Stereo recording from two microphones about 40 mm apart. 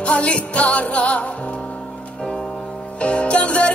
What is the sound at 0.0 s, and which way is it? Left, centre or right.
Music, left.